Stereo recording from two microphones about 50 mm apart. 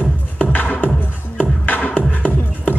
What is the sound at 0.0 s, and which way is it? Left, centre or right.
Music, left.